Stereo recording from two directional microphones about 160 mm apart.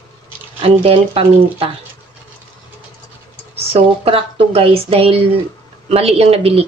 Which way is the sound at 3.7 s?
35° right (ahead or behind).